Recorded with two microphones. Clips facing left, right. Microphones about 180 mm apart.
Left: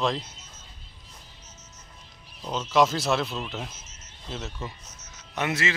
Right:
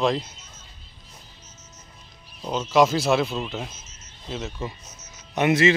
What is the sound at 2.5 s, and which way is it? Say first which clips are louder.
Speech: right 3 dB; 5° right (ahead or behind).